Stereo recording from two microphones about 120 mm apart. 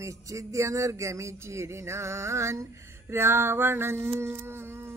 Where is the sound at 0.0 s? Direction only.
25° right (ahead or behind).